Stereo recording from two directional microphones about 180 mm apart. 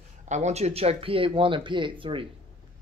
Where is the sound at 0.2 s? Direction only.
40° right (ahead or behind).